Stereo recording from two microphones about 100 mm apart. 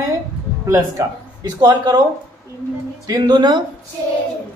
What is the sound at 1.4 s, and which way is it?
Speech, 40° right (ahead or behind).